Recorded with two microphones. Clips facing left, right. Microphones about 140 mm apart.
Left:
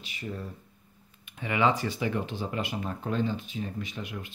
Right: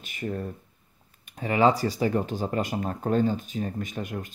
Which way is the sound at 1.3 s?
40° right (ahead or behind).